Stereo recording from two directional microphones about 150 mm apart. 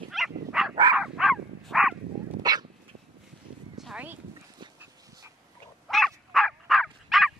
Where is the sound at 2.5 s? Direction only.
25° right (ahead or behind).